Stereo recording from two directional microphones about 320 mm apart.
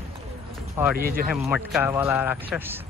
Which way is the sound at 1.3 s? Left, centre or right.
Centre.